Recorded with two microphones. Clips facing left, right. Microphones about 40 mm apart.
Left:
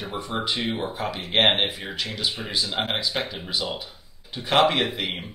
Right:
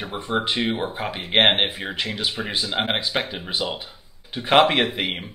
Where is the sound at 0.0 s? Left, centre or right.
Right.